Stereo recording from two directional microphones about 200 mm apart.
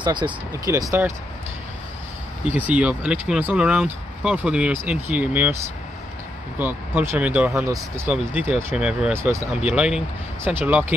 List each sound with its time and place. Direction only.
0.0 s speech: 20° right (ahead or behind)
2.5 s speech: 5° right (ahead or behind)
6.6 s speech: 10° right (ahead or behind)